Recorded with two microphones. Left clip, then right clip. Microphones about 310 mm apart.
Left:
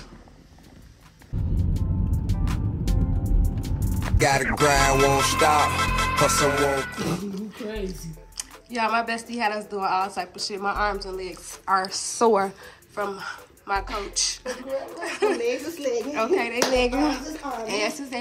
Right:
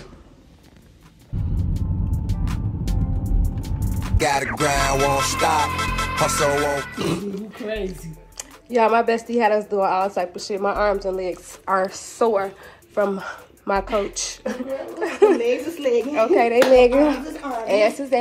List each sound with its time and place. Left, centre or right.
1.6 s music: centre
8.7 s speech: centre
12.9 s speech: centre